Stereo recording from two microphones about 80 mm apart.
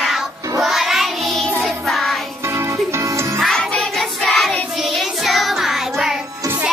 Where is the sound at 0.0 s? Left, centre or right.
Centre.